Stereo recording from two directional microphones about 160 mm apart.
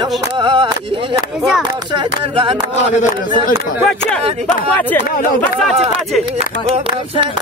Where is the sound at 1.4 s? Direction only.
5° right (ahead or behind).